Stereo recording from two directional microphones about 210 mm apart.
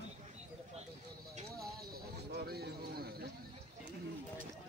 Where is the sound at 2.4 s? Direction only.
50° right (ahead or behind).